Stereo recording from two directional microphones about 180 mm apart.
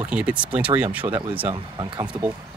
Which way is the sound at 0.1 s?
5° right (ahead or behind).